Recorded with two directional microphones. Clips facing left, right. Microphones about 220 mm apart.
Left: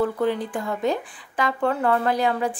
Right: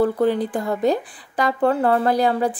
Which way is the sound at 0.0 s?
35° right (ahead or behind).